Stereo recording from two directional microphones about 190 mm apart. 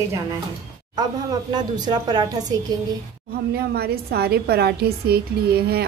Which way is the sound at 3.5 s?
55° right (ahead or behind).